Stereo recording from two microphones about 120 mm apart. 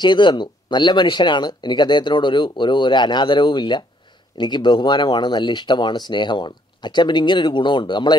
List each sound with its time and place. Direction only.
0.0 s speech: 40° left (ahead or behind)